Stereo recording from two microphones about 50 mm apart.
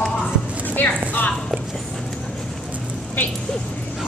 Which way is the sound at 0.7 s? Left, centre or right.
Left.